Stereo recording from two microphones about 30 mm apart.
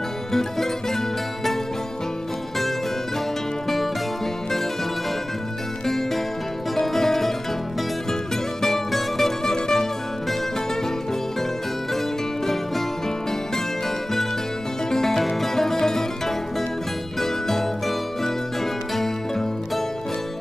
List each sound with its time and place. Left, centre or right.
0.3 s music: centre
3.6 s music: centre
5.9 s music: centre
8.6 s music: centre
14.9 s music: centre
17.2 s music: centre